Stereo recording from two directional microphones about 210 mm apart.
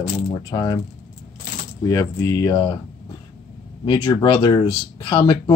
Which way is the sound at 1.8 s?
15° left (ahead or behind).